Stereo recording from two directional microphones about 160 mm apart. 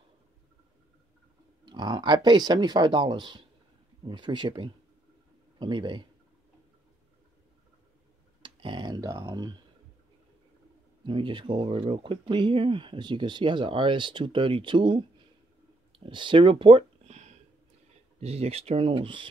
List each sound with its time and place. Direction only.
1.7 s speech: 25° right (ahead or behind)
8.4 s speech: 30° right (ahead or behind)
11.1 s speech: 30° right (ahead or behind)
16.1 s speech: 30° right (ahead or behind)